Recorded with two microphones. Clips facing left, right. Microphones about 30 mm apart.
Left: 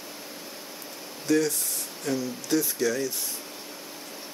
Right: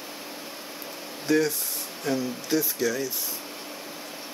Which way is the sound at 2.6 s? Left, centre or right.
Centre.